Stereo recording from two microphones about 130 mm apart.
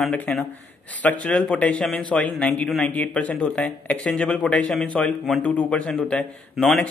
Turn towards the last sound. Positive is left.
turn(degrees=5)  # may be behind; listen again after turning